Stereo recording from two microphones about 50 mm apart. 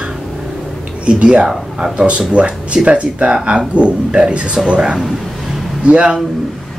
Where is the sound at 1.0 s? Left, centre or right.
Right.